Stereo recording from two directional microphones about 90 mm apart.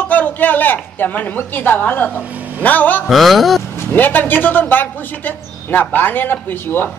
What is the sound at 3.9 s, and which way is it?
A woman's voice, 20° left (ahead or behind).